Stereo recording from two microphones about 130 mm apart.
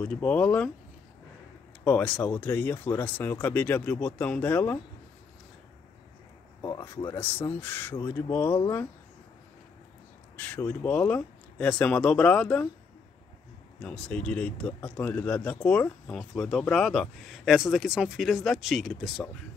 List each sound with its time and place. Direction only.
0.0 s speech: 10° left (ahead or behind)
1.9 s speech: 10° left (ahead or behind)
6.6 s speech: 30° left (ahead or behind)
7.2 s speech: 15° left (ahead or behind)
10.3 s speech: 15° left (ahead or behind)
13.7 s speech: 5° left (ahead or behind)